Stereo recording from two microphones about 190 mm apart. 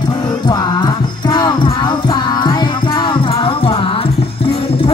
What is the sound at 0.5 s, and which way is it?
Music, 20° left (ahead or behind).